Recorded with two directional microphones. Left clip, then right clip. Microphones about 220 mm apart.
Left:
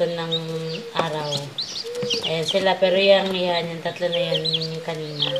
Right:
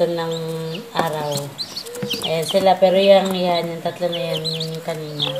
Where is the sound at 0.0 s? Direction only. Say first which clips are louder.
Right 3 dB; 15° right (ahead or behind).